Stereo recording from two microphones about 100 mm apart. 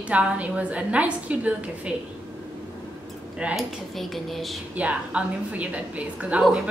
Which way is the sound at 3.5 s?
Centre (ahead or behind).